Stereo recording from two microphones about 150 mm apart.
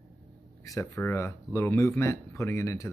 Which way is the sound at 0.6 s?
20° left (ahead or behind).